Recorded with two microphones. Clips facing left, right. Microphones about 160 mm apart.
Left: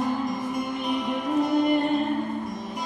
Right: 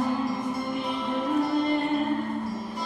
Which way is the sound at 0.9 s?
15° left (ahead or behind).